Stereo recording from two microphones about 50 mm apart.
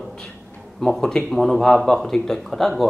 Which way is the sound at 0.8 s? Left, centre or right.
Centre.